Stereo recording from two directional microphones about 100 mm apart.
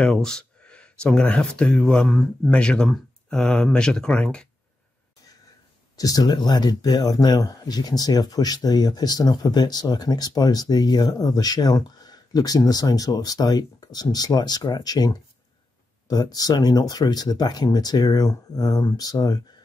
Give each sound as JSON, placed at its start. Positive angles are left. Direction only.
{"t": 0.0, "sound": "speech", "side_deg": 5}
{"t": 5.9, "sound": "speech", "side_deg": 40}